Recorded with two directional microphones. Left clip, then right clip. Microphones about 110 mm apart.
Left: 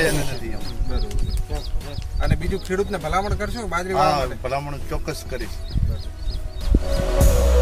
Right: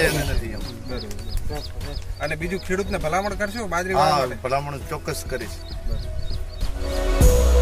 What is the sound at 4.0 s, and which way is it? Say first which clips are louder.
A man's voice: even; 20° left (ahead or behind).